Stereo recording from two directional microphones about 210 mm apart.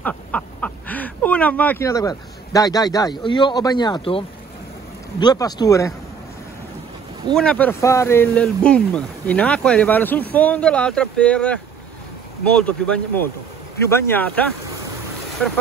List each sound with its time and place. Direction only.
0.0 s speech: 5° left (ahead or behind); by 4.2 s 25° left (ahead or behind)
5.2 s speech: 20° left (ahead or behind)
7.3 s speech: 5° left (ahead or behind)